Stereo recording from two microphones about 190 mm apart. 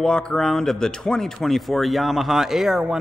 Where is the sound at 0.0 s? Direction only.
5° left (ahead or behind).